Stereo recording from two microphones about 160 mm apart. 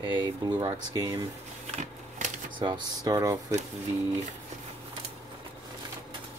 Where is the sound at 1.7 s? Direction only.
50° right (ahead or behind).